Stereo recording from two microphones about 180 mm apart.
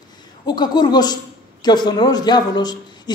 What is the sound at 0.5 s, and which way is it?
A man's voice, 25° left (ahead or behind).